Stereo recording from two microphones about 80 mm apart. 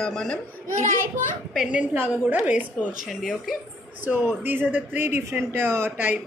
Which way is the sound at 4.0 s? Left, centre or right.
Right.